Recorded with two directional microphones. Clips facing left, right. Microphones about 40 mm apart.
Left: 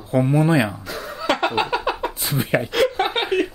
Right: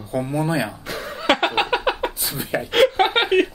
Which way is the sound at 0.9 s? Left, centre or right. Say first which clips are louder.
Right 2 dB; right.